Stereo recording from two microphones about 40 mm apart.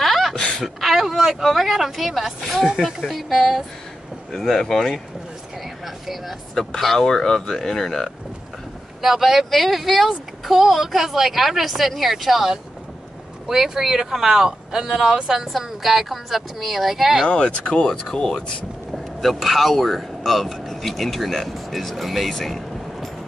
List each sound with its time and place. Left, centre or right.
0.0 s a sound: centre
0.3 s a sound: centre
0.7 s speech: centre
6.5 s speech: centre
9.0 s speech: centre
17.3 s speech: left
17.8 s speech: centre
18.9 s speech: centre
22.4 s vehicle: centre